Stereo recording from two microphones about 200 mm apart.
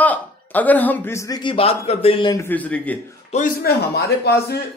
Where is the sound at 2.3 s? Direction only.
10° left (ahead or behind).